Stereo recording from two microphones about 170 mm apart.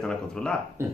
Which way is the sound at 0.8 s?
15° right (ahead or behind).